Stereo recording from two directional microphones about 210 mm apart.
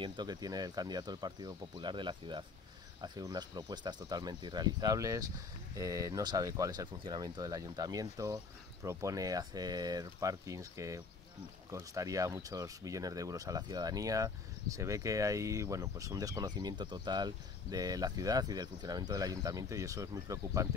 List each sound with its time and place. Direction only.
0.0 s speech: 20° right (ahead or behind)